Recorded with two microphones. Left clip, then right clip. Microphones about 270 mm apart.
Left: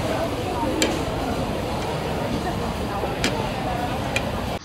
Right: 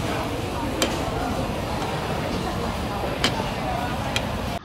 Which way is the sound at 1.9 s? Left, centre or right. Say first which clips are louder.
Left 1 dB; centre.